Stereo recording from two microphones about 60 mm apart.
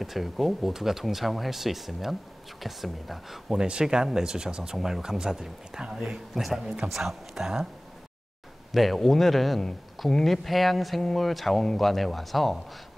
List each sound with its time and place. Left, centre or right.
0.0 s a man's voice: centre
8.7 s a man's voice: centre